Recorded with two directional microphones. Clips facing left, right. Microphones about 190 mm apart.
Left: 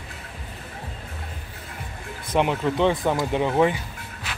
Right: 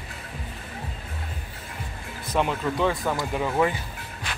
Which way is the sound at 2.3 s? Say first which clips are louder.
Left 3 dB; 20° left (ahead or behind).